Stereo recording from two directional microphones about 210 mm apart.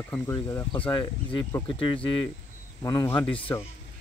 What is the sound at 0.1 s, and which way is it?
Speech, 10° left (ahead or behind).